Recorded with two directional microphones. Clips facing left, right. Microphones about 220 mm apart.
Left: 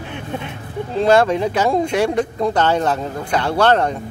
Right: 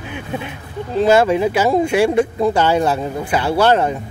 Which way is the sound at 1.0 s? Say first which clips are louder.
Right 1 dB; 5° right (ahead or behind).